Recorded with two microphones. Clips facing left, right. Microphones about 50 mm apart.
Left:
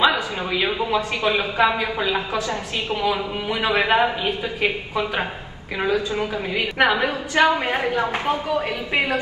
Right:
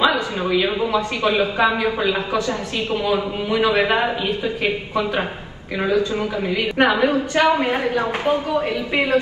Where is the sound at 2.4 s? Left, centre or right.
Left.